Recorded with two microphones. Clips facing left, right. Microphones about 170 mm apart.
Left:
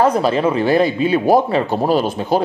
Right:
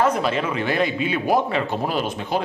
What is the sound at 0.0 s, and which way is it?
Speech, 35° left (ahead or behind).